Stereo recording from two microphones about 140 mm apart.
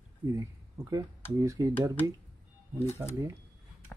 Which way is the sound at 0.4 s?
25° right (ahead or behind).